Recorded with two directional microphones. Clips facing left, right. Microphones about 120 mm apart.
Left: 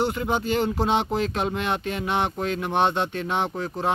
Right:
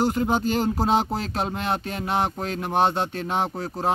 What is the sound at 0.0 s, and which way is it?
Speech, 40° right (ahead or behind).